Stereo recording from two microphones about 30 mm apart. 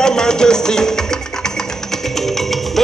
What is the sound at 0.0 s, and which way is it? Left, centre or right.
Music, left.